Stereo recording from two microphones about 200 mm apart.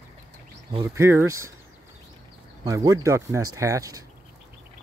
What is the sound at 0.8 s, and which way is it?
Speech, 15° right (ahead or behind).